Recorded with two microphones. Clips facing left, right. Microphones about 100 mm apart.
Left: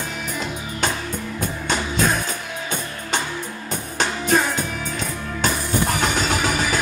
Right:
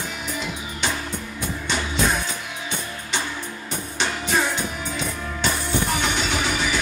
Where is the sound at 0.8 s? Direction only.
45° left (ahead or behind).